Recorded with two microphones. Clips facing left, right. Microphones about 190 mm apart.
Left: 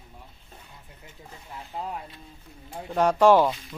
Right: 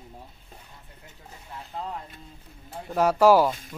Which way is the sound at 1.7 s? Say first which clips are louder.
Left 1 dB; 10° left (ahead or behind).